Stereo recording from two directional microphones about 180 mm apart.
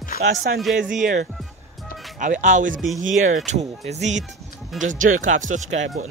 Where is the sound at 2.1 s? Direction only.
45° right (ahead or behind).